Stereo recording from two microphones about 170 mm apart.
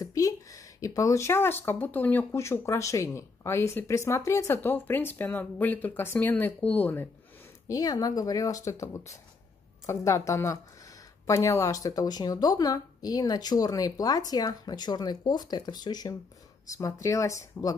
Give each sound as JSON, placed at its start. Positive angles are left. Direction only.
{"t": 0.0, "sound": "speech", "side_deg": 20}
{"t": 7.6, "sound": "speech", "side_deg": 20}